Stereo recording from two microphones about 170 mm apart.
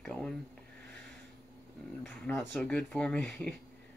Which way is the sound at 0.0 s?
5° left (ahead or behind).